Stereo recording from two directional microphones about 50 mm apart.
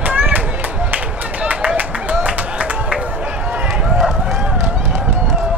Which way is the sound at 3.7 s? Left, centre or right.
Centre.